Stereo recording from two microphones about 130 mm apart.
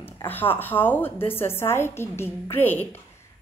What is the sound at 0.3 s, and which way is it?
A woman's voice, 15° left (ahead or behind).